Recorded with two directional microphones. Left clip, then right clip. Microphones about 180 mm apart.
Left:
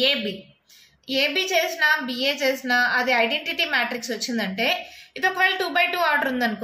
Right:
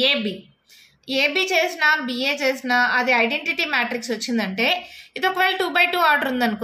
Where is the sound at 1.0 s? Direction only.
30° right (ahead or behind).